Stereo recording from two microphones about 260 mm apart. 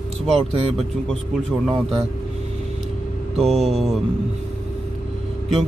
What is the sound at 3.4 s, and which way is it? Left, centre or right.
Speech, centre.